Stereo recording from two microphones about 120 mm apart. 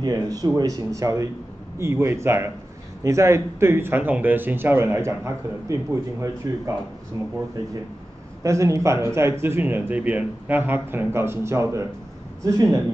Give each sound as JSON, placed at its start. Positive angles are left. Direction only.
{"t": 0.0, "sound": "speech", "side_deg": -30}
{"t": 8.4, "sound": "speech", "side_deg": -25}